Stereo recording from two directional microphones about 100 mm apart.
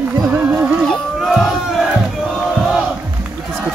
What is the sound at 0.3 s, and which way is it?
Music, 15° right (ahead or behind).